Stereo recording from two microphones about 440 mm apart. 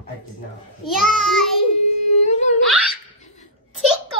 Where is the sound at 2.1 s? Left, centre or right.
Centre.